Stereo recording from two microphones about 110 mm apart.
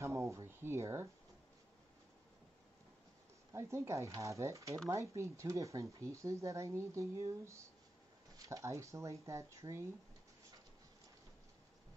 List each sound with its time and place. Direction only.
0.0 s speech: 25° right (ahead or behind)
3.5 s speech: 25° right (ahead or behind)